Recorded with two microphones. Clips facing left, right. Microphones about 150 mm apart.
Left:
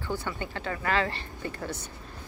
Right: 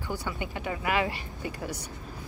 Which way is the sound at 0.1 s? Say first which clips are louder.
Left 1 dB; 15° right (ahead or behind).